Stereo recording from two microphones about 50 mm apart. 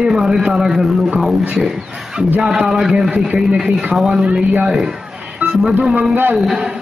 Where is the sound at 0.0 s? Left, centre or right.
Centre.